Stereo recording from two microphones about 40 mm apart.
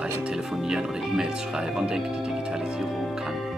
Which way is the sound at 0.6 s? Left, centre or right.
Right.